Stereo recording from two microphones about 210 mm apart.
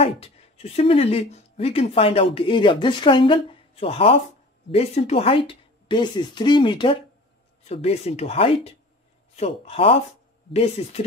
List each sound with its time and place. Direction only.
0.0 s speech: 30° left (ahead or behind)